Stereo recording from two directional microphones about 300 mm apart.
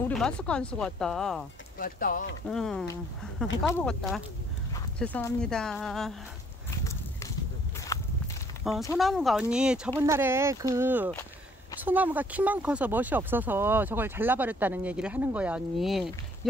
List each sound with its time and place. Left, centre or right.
0.1 s speech: centre
1.8 s speech: left
2.4 s speech: centre
6.8 s walk: centre
8.9 s speech: centre